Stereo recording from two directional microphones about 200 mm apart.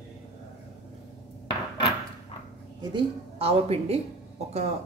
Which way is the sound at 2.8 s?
25° right (ahead or behind).